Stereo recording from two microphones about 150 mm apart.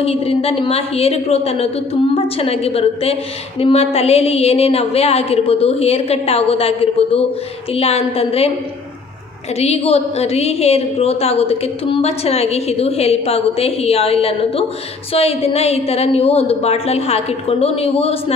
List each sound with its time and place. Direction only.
0.0 s a woman's voice: 40° left (ahead or behind)
9.6 s a woman's voice: 45° left (ahead or behind)